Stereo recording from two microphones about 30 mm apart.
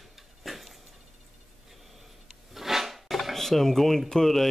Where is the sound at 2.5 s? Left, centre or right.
Centre.